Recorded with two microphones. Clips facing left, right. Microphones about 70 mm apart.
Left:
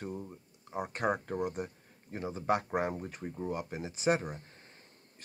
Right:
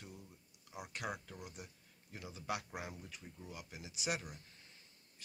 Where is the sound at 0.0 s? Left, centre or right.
Left.